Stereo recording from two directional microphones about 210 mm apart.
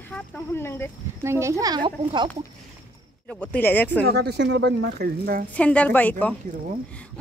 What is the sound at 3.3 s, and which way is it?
Speech, 5° left (ahead or behind).